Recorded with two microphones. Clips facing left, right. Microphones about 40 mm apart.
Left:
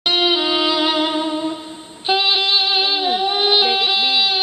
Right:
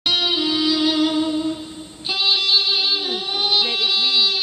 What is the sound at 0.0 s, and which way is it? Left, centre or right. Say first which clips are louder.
Music: left 3 dB; left.